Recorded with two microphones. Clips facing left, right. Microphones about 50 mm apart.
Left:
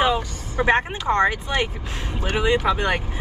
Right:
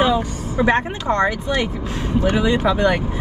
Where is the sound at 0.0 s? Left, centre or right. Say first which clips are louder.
Right 3 dB; left.